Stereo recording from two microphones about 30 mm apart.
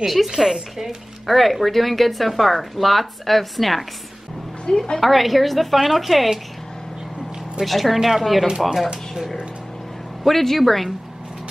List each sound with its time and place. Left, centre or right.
0.0 s speech: centre
1.2 s speech: centre
4.6 s a woman's voice: left
5.0 s speech: centre
7.8 s speech: centre
8.5 s speech: right
10.2 s speech: centre